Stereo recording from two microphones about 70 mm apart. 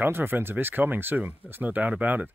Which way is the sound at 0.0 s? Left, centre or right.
Right.